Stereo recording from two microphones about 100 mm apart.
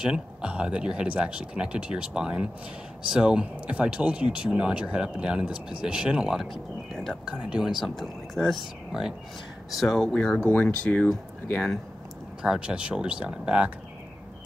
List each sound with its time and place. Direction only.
0.0 s speech: 10° right (ahead or behind); by 11.6 s 20° left (ahead or behind)
12.4 s speech: 10° right (ahead or behind)